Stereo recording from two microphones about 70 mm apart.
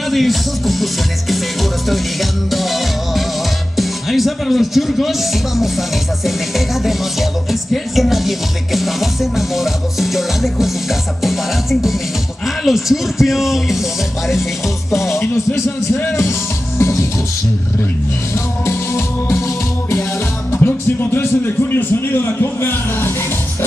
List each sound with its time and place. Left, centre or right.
0.1 s music: centre
12.4 s music: centre
15.1 s speech: left
18.3 s music: left
20.5 s a man's voice: left